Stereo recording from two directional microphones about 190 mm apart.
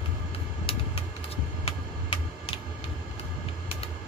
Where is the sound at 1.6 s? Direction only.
30° left (ahead or behind).